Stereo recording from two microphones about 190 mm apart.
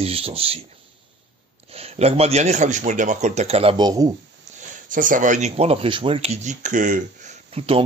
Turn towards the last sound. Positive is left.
turn(degrees=-30)  # may be behind; listen again after turning